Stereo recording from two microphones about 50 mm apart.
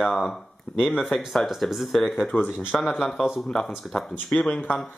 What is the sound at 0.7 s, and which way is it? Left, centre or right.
Speech, left.